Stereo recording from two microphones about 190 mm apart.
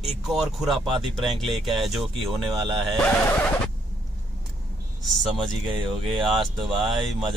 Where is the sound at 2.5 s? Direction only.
25° right (ahead or behind).